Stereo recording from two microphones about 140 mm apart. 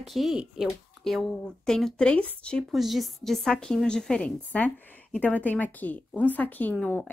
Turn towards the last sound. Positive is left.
turn(degrees=15)  # may be behind; listen again after turning